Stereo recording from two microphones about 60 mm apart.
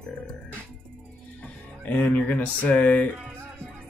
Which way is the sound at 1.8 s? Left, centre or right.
Left.